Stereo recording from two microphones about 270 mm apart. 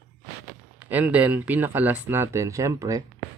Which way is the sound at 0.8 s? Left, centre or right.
Centre.